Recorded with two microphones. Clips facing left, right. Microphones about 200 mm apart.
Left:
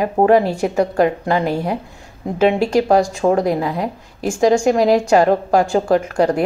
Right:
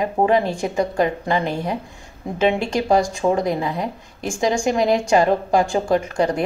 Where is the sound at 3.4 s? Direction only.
5° left (ahead or behind).